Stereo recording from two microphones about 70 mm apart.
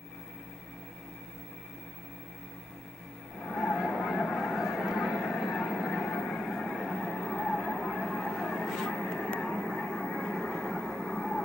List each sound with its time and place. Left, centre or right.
3.4 s vehicle: centre
3.7 s honk: centre
9.3 s vehicle: centre